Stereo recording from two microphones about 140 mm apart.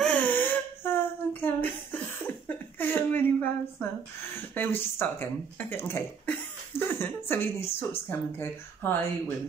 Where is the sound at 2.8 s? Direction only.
15° left (ahead or behind).